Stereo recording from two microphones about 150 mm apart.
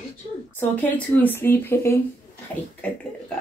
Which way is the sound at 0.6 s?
10° left (ahead or behind).